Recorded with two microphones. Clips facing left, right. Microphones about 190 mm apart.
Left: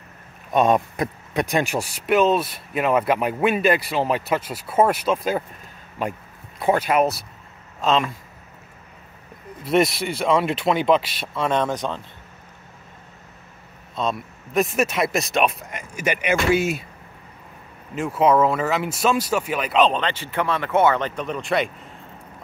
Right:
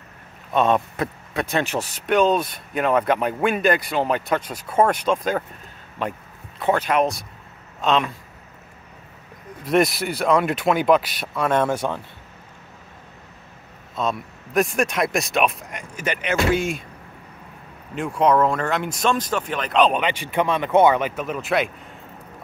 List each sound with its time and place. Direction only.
0.5 s speech: 15° left (ahead or behind)
9.7 s speech: centre (ahead or behind)
13.9 s speech: centre (ahead or behind)
17.9 s speech: centre (ahead or behind)
19.9 s speech: 15° right (ahead or behind)